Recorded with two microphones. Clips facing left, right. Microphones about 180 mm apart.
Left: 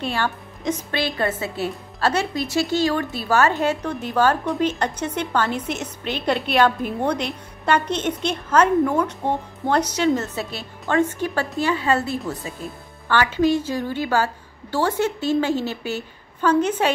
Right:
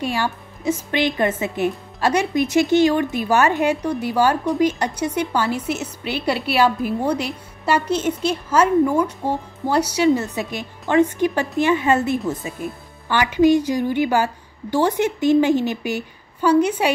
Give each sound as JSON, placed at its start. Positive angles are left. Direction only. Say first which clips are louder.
{"t": 0.0, "sound": "a woman's voice", "louder": "right 2 dB", "side_deg": -10}